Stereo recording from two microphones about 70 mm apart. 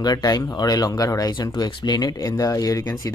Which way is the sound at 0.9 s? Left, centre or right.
Left.